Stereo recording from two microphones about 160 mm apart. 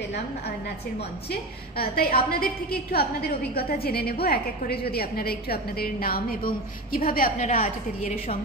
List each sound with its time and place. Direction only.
1.3 s a woman's voice: 70° left (ahead or behind); by 8.4 s 45° left (ahead or behind)